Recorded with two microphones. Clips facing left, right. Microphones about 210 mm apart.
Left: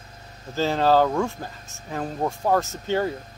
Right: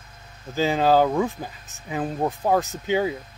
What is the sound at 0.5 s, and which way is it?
Speech, 10° right (ahead or behind).